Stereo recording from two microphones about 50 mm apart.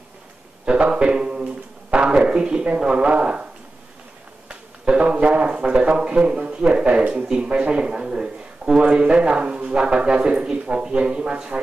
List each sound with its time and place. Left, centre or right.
0.7 s speech: right
4.5 s a sound: right
5.6 s speech: right